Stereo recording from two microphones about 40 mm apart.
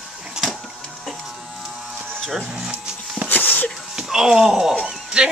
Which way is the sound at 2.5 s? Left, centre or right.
Centre.